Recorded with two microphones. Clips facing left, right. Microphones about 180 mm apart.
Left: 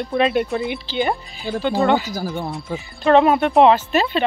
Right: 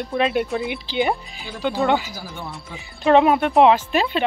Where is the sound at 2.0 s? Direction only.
40° left (ahead or behind).